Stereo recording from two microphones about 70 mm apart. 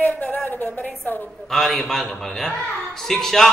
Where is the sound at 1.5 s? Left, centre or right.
Centre.